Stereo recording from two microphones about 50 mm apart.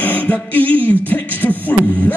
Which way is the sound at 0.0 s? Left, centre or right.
Left.